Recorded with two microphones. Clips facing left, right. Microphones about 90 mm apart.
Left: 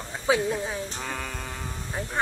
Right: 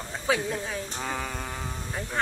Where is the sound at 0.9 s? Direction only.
5° right (ahead or behind).